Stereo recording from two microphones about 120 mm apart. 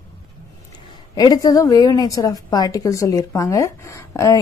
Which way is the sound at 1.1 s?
30° left (ahead or behind).